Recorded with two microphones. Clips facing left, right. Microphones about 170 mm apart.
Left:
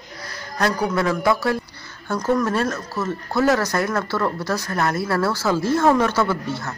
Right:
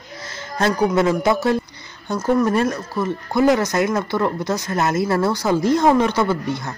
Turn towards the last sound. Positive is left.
turn(degrees=-15)  # may be behind; listen again after turning